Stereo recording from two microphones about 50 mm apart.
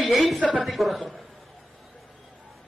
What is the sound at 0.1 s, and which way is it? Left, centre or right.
Speech, centre.